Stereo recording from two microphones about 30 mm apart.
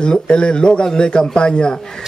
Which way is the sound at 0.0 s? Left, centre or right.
Left.